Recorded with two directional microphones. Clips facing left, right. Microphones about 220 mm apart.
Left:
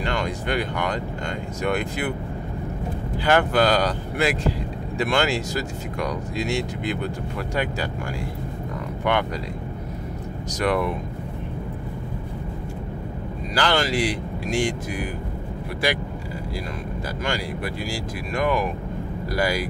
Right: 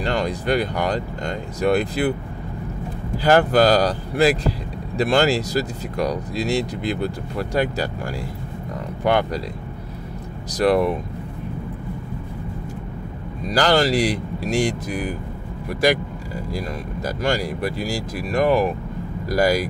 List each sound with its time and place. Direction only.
0.0 s speech: 35° right (ahead or behind)
3.3 s speech: 40° right (ahead or behind)
9.0 s speech: 35° right (ahead or behind)
10.6 s speech: 35° right (ahead or behind)
13.6 s speech: 40° right (ahead or behind)
17.2 s speech: 40° right (ahead or behind)